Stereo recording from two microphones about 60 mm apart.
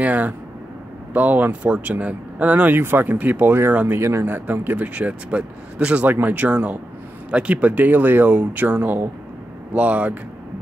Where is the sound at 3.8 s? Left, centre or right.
Right.